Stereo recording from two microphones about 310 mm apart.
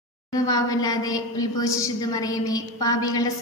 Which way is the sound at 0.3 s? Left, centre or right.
Centre.